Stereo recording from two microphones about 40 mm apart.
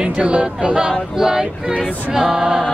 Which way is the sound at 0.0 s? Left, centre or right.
Right.